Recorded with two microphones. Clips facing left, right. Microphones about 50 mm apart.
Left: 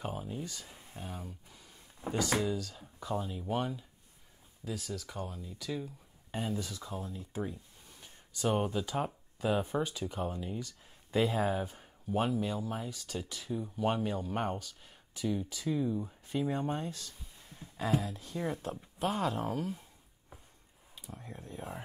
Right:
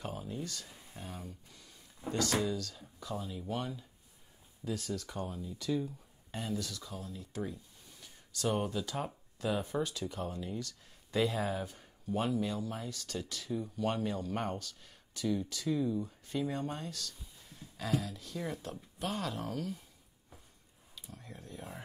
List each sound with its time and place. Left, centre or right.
0.0 s a sound: centre
1.0 s speech: centre
4.6 s speech: centre
6.3 s speech: centre
20.9 s speech: left